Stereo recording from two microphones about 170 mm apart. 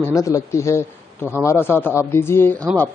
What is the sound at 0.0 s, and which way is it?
Speech, 15° left (ahead or behind).